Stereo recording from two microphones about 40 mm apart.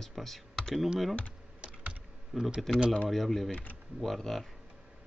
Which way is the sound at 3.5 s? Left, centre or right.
Left.